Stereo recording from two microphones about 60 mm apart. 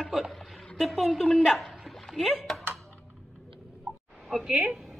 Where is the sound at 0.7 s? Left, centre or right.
Centre.